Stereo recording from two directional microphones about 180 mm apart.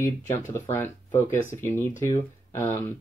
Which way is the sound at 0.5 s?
15° left (ahead or behind).